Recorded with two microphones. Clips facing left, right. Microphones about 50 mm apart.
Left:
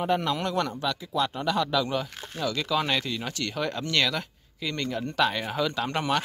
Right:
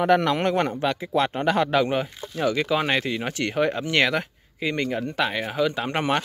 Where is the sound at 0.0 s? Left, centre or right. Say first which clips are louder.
Right 6 dB; right.